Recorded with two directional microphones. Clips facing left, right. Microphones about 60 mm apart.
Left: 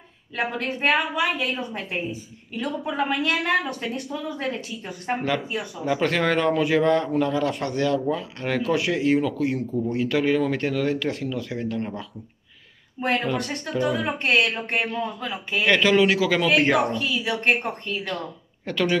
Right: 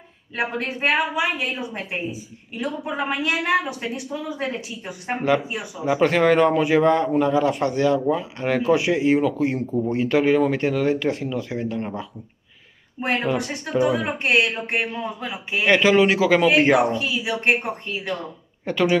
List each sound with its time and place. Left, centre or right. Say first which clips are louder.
0.4 s a man's voice: right 1 dB; centre